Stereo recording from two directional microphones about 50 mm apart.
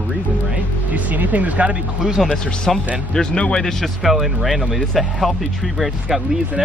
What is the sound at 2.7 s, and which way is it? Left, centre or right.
Speech, centre.